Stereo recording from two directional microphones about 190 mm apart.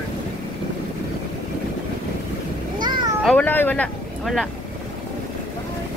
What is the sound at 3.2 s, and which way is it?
Speech, 10° left (ahead or behind).